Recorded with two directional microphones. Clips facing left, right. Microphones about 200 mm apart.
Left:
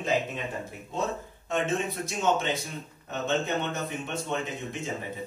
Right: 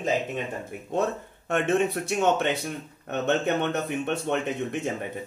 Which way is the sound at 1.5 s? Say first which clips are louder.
Right 5 dB; 65° right (ahead or behind).